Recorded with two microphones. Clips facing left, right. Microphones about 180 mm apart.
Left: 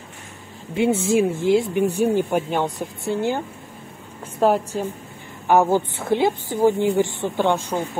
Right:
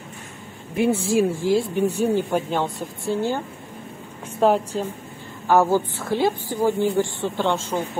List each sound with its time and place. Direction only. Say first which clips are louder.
0.7 s speech: left 1 dB; 25° left (ahead or behind)
4.4 s a woman's voice: even; 10° left (ahead or behind)